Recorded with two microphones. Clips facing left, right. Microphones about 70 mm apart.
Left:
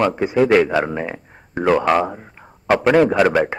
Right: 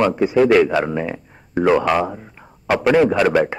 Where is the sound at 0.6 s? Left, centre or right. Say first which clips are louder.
Right 1 dB; centre.